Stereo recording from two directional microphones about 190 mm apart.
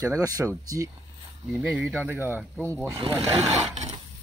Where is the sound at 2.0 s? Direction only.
10° right (ahead or behind).